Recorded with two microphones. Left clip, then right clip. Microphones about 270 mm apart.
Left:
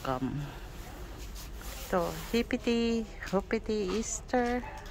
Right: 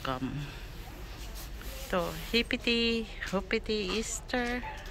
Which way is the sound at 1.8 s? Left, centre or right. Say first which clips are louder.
Left 1 dB; centre.